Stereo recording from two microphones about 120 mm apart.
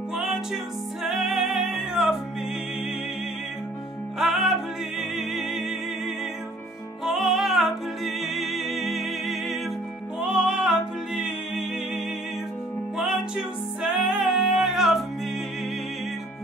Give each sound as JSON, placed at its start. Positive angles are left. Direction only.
{"t": 0.1, "sound": "music", "side_deg": -5}
{"t": 4.2, "sound": "music", "side_deg": 0}
{"t": 7.1, "sound": "music", "side_deg": 0}
{"t": 12.9, "sound": "music", "side_deg": -5}